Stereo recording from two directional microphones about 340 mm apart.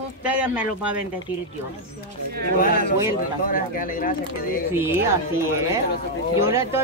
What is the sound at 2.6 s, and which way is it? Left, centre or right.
Speech, left.